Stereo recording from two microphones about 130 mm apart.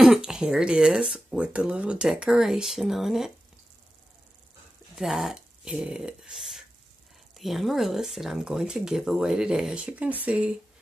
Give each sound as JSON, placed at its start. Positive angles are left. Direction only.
{"t": 0.0, "sound": "speech", "side_deg": -5}
{"t": 4.9, "sound": "speech", "side_deg": 0}